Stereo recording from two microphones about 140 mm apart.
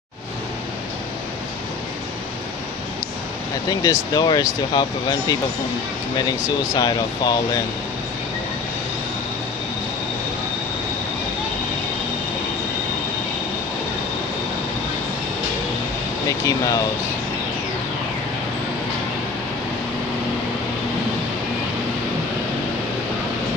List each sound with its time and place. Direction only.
3.8 s speech: 25° left (ahead or behind)
6.7 s speech: 30° left (ahead or behind)
16.3 s speech: 25° left (ahead or behind)